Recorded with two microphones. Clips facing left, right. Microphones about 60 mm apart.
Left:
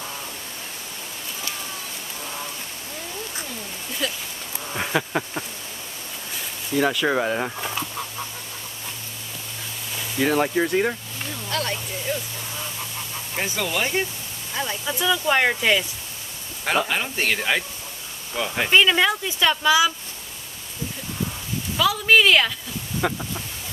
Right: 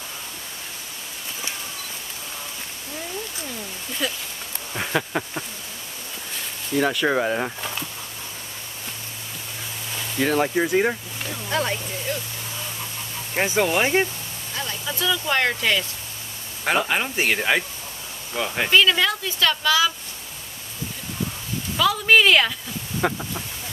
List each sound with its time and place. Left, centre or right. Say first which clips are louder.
4.0 s speech: right 1 dB; centre
9.9 s speech: even; centre
12.1 s speech: left 2 dB; centre
13.3 s speech: right 6 dB; right
14.5 s speech: left 3 dB; centre
16.6 s speech: right 1 dB; centre
18.7 s speech: left 1 dB; centre
21.7 s speech: even; centre
22.9 s a sound: right 1 dB; centre